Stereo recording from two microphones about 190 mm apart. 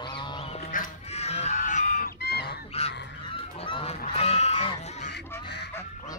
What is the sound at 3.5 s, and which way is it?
Goose, 30° left (ahead or behind).